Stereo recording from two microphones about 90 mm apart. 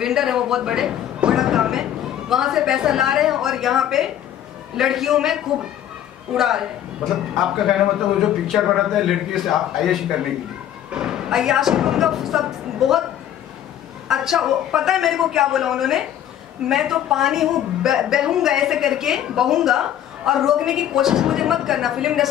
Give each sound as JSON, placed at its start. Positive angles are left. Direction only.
{"t": 0.0, "sound": "a woman's voice", "side_deg": -5}
{"t": 8.2, "sound": "a woman's voice", "side_deg": 0}
{"t": 14.0, "sound": "a woman's voice", "side_deg": -5}